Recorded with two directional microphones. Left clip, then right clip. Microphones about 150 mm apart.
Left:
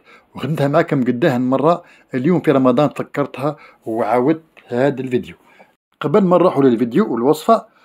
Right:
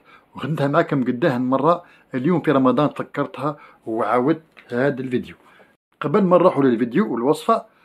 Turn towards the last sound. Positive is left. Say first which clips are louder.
# left 5 dB
turn(degrees=30)  # may be behind; listen again after turning